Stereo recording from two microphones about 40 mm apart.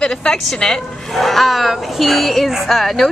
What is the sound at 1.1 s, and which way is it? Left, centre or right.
A woman's voice, centre.